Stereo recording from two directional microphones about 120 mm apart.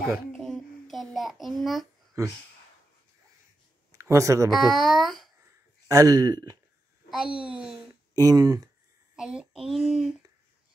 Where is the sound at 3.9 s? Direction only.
25° right (ahead or behind).